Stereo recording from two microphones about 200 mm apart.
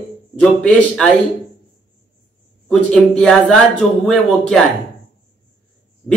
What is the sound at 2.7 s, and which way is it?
Speech, centre (ahead or behind).